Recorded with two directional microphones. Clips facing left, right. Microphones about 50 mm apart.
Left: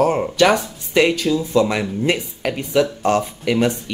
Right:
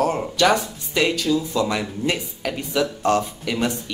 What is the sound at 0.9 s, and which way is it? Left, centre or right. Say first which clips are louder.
Speech: left 4 dB; left.